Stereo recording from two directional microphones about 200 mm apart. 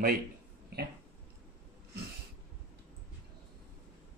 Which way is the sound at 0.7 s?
50° right (ahead or behind).